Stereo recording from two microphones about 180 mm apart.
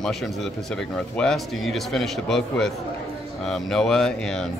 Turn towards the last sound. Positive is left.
turn(degrees=5)  # may be behind; listen again after turning